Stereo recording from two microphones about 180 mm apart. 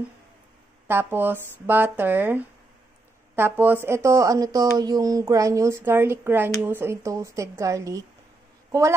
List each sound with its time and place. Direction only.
0.8 s speech: 10° right (ahead or behind)